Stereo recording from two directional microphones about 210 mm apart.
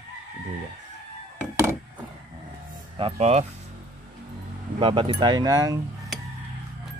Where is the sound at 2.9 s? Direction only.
30° right (ahead or behind).